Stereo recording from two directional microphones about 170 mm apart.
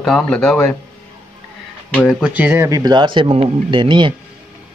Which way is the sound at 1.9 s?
Centre (ahead or behind).